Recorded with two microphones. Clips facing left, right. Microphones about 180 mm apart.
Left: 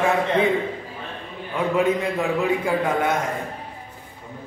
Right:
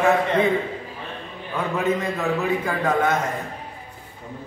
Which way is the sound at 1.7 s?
10° left (ahead or behind).